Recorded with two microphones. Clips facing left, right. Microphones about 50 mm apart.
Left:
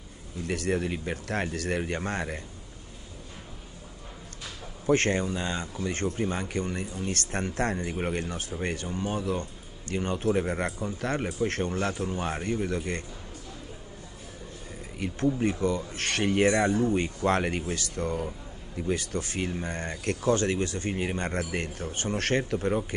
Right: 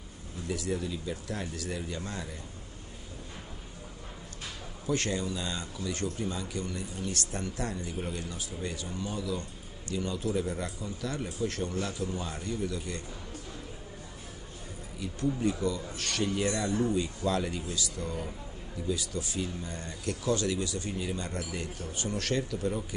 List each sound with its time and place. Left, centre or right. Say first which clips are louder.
0.5 s speech: left 5 dB; left
4.8 s speech: left 6 dB; left
15.4 s speech: left 3 dB; left